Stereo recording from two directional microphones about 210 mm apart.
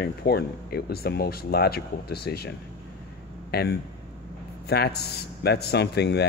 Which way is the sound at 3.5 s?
50° left (ahead or behind).